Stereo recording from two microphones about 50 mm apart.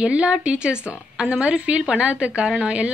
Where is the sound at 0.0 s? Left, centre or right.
Right.